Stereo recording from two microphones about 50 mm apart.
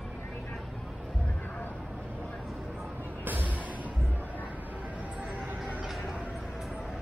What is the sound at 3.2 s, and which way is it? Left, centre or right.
Music, right.